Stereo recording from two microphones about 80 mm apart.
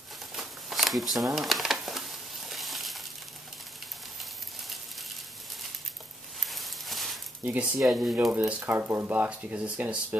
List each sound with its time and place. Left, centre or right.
0.3 s shuffling cards: centre
1.3 s crumpling: centre
6.4 s a sound: centre
7.4 s speech: right